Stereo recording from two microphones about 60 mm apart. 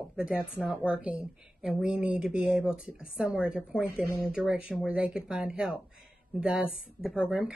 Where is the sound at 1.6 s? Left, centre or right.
Centre.